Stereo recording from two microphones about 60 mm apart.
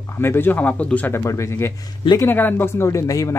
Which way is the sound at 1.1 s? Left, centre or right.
Left.